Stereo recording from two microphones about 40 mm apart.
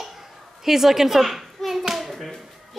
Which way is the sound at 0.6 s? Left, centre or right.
Centre.